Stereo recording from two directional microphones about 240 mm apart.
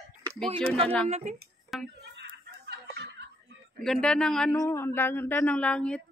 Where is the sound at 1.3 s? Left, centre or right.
Right.